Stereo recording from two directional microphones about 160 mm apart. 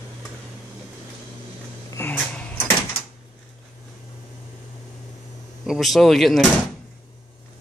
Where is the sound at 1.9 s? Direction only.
15° left (ahead or behind).